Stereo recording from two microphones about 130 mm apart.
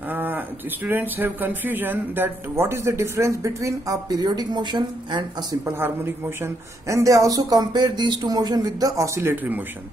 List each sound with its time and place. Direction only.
0.1 s a sound: 15° right (ahead or behind)
0.8 s speech: 15° right (ahead or behind); by 5.6 s 35° right (ahead or behind)
6.4 s speech: 25° right (ahead or behind)